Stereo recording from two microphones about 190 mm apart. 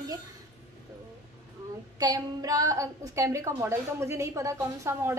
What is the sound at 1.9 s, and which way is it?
A woman's voice, 20° right (ahead or behind).